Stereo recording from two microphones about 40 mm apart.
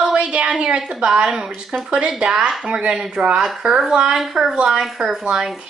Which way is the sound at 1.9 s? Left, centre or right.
Right.